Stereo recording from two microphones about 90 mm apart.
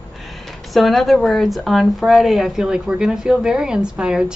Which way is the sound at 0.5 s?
Centre (ahead or behind).